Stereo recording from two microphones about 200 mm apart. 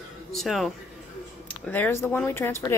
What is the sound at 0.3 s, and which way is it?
Speech, centre (ahead or behind).